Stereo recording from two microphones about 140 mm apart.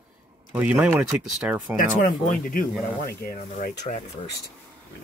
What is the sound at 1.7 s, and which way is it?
Speech, 80° left.